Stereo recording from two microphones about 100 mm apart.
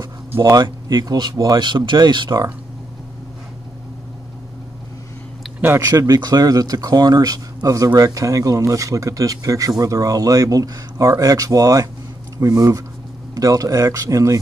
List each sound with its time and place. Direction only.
0.5 s speech: 45° right (ahead or behind)
5.6 s speech: 25° right (ahead or behind)